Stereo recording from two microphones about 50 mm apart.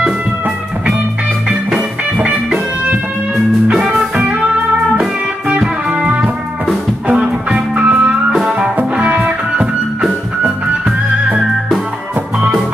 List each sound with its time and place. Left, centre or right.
4.0 s music: right
5.9 s music: right
8.5 s music: centre
8.9 s music: right